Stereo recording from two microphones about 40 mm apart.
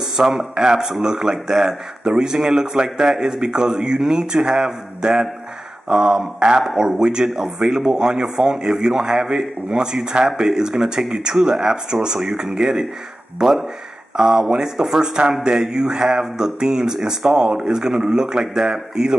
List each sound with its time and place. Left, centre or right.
0.0 s speech: centre
13.4 s speech: centre